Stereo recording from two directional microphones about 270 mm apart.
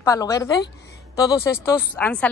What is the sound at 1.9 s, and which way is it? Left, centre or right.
Speech, centre.